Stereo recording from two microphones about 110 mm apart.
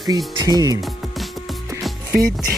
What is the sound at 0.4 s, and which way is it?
Speech, 35° right (ahead or behind).